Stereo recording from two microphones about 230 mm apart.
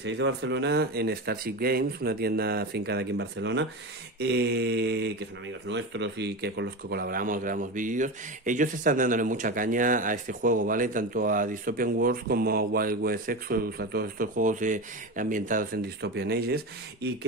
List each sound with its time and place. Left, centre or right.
0.0 s speech: right